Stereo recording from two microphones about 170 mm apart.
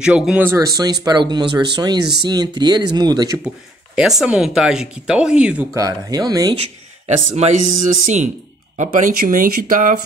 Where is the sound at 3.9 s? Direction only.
5° right (ahead or behind).